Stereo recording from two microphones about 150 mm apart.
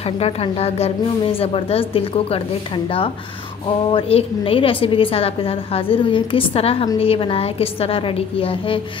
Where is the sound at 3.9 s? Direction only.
35° left (ahead or behind).